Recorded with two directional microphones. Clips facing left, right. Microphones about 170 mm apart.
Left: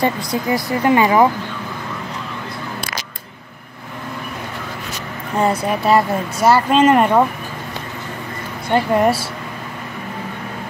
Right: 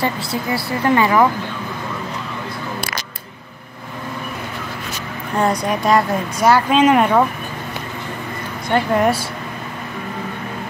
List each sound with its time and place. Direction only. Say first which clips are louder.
0.0 s speech: left 2 dB; 15° left (ahead or behind)
5.4 s speech: left 1 dB; 5° left (ahead or behind)
6.8 s speech: left 1 dB; 5° right (ahead or behind)
8.6 s speech: left 1 dB; 5° left (ahead or behind)